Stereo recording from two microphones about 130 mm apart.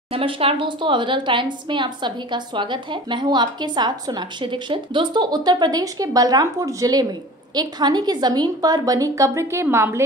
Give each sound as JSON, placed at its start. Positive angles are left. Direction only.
{"t": 0.1, "sound": "a woman's voice", "side_deg": -45}